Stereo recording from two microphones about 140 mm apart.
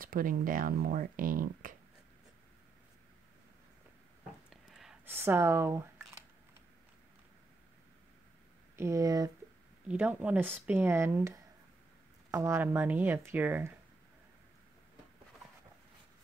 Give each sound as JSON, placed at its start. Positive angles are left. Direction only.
{"t": 0.0, "sound": "speech", "side_deg": -85}
{"t": 4.5, "sound": "a sound", "side_deg": -5}
{"t": 5.0, "sound": "speech", "side_deg": -15}
{"t": 8.7, "sound": "speech", "side_deg": -20}
{"t": 9.8, "sound": "speech", "side_deg": -10}